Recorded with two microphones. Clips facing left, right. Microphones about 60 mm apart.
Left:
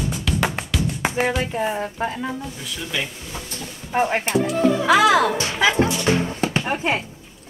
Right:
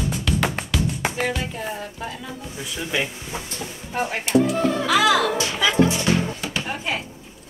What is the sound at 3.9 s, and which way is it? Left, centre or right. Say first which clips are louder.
Speech: left 6 dB; left.